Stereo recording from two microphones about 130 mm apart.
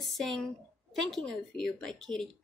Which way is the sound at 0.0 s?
Centre (ahead or behind).